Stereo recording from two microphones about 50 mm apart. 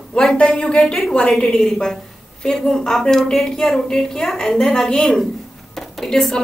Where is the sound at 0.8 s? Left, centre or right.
Centre.